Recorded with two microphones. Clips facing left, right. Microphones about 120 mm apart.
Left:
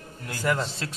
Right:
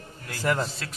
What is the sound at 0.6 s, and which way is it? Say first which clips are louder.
Speech: left 2 dB; 30° left (ahead or behind).